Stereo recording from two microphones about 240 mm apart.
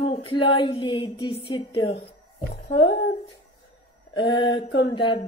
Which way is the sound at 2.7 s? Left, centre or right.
Left.